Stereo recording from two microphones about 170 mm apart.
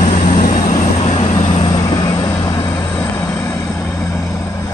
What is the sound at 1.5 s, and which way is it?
Vehicle, 30° left (ahead or behind).